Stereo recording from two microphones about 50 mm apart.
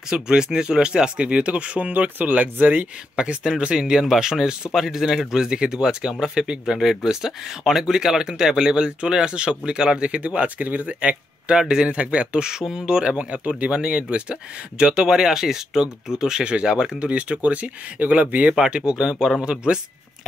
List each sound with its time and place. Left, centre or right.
0.1 s speech: centre; by 2.9 s right
3.2 s speech: centre; by 18.5 s right
18.5 s speech: centre